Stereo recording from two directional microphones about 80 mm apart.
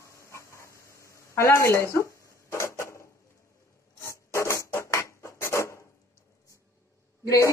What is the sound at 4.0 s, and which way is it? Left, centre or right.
Filing, left.